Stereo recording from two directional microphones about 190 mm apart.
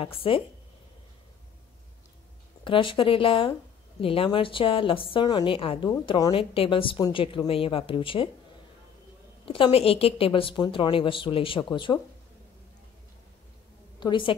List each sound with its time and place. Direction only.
0.0 s a woman's voice: 30° left (ahead or behind)
2.6 s a woman's voice: 25° left (ahead or behind)
9.5 s a woman's voice: 30° left (ahead or behind)
13.9 s a woman's voice: 25° left (ahead or behind)